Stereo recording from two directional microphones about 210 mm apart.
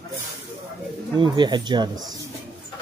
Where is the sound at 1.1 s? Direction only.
20° right (ahead or behind).